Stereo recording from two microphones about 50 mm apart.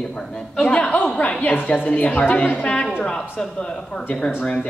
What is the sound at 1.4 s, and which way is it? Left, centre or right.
A woman's voice, left.